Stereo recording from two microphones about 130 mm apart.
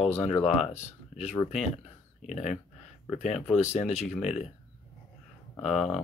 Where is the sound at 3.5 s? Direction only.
60° left (ahead or behind).